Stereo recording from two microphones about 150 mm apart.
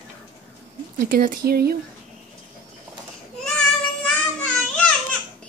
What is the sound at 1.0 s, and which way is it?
Speech, 75° right (ahead or behind).